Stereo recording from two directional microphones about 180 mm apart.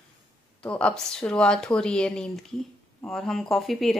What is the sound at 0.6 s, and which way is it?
Speech, 5° left (ahead or behind).